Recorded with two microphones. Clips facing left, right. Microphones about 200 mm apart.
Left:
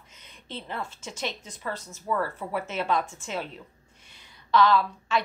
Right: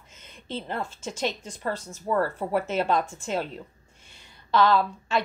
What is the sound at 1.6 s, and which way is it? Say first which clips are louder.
Speech: right 5 dB; 35° right (ahead or behind).